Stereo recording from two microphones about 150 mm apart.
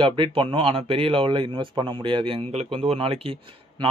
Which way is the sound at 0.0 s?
35° right (ahead or behind).